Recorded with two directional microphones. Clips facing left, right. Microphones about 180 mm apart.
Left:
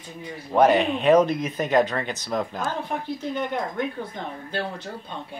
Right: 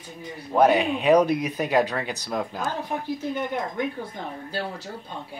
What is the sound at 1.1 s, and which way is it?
Speech, 10° right (ahead or behind).